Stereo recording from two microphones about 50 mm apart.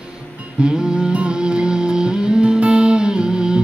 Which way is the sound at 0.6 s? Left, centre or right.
Centre.